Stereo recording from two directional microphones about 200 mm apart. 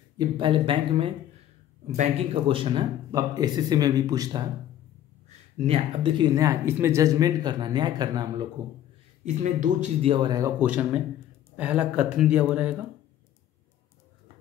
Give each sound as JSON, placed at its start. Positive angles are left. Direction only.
{"t": 0.2, "sound": "speech", "side_deg": -25}
{"t": 5.7, "sound": "speech", "side_deg": -25}
{"t": 9.2, "sound": "speech", "side_deg": -35}
{"t": 10.1, "sound": "speech", "side_deg": -20}
{"t": 10.6, "sound": "speech", "side_deg": -5}